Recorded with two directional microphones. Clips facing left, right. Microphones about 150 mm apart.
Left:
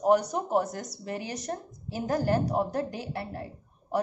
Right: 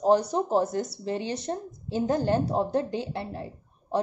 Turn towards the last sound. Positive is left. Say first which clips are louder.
# right 2 dB
turn(degrees=-25)  # may be behind; listen again after turning